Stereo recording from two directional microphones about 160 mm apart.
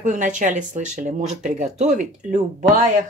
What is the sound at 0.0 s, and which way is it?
A woman's voice, 50° right (ahead or behind).